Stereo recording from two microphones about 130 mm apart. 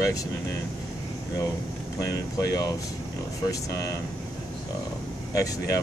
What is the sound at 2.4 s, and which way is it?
Speech, 25° left (ahead or behind).